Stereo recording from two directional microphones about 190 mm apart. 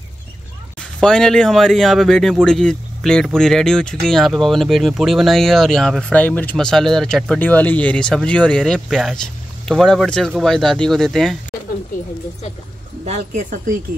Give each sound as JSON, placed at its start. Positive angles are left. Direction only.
{"t": 1.0, "sound": "speech", "side_deg": 5}
{"t": 13.0, "sound": "speech", "side_deg": -40}